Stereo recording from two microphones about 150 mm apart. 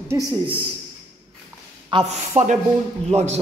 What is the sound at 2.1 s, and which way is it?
A man's voice, 50° right (ahead or behind).